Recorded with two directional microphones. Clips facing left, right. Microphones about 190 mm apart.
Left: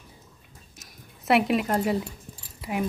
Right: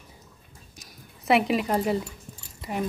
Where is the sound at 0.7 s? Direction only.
Centre (ahead or behind).